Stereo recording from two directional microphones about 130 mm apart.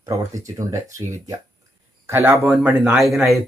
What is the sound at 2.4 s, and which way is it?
Speech, 10° right (ahead or behind).